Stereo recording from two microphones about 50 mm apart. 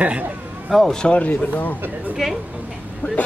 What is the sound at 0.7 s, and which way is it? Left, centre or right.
Speech, centre.